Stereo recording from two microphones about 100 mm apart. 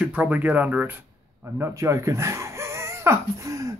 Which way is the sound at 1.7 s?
30° right (ahead or behind).